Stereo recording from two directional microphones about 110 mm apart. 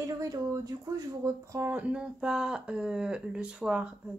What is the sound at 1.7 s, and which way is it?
Speech, 10° right (ahead or behind).